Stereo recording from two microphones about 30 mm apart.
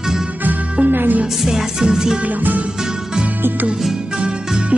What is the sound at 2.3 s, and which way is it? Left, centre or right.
Music, right.